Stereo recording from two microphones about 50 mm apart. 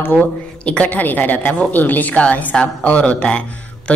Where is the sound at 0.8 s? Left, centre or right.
Left.